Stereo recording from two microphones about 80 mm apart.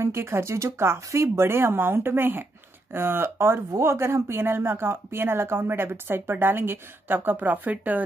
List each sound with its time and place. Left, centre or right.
0.0 s speech: right